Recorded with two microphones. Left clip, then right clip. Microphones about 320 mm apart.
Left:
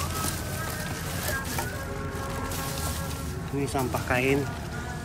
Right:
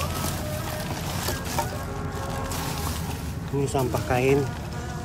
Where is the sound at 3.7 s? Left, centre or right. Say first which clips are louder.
Right 1 dB; centre.